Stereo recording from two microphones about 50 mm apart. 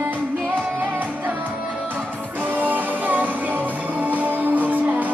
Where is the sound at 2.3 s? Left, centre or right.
Right.